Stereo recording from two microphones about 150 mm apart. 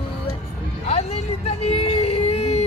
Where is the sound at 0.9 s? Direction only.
45° left (ahead or behind).